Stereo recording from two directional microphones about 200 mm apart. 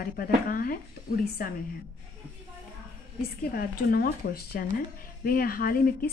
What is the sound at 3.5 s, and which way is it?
Speech, 45° left (ahead or behind).